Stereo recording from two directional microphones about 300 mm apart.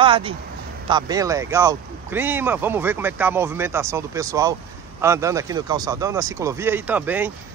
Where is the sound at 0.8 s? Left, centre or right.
Centre.